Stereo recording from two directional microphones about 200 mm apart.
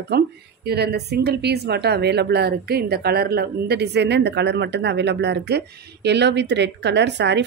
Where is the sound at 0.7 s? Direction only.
55° right (ahead or behind).